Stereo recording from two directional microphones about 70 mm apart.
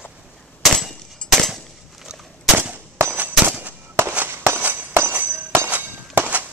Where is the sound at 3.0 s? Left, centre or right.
Right.